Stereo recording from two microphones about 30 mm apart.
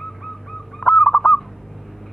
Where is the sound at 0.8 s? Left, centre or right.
Left.